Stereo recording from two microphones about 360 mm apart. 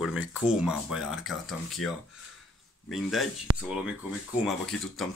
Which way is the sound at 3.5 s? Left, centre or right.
Right.